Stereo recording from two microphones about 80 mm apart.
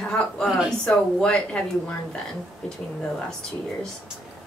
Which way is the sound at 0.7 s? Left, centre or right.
Centre.